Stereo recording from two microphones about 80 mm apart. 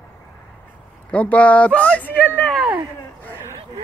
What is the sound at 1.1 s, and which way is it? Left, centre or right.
Speech, centre.